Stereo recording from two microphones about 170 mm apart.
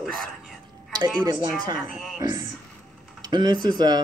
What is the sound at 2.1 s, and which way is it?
Speech, 20° right (ahead or behind).